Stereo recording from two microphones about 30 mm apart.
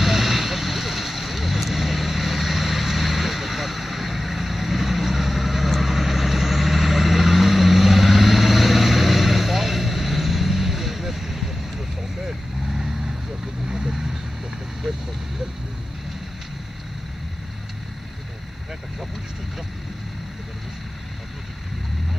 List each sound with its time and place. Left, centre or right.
0.0 s vehicle: centre; by 15.0 s right